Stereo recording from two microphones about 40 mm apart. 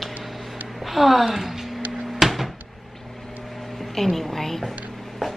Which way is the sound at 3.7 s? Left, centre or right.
Centre.